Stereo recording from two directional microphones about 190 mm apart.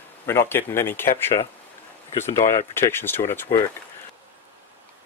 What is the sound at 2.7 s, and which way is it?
Speech, 10° left (ahead or behind).